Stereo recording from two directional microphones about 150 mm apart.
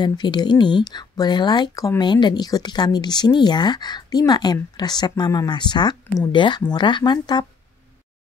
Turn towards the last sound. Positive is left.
turn(degrees=30)  # may be behind; listen again after turning